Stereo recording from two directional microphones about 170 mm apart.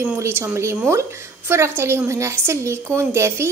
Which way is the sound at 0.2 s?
15° right (ahead or behind).